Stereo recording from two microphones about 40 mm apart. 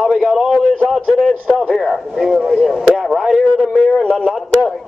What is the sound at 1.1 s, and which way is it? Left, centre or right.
Speech, centre.